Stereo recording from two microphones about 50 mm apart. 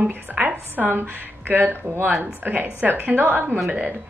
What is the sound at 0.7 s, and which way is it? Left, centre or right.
A woman's voice, right.